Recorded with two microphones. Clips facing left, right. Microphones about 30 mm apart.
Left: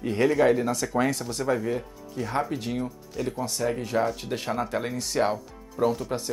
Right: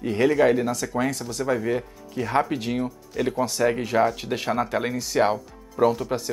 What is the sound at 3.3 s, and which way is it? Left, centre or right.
Speech, right.